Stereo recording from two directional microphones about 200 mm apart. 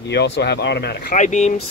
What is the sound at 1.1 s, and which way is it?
Speech, 35° left (ahead or behind).